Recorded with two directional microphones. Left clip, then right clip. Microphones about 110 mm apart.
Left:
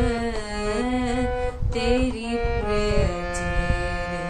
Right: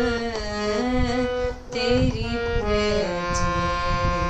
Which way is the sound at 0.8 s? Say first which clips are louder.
Right 1 dB; 40° left (ahead or behind).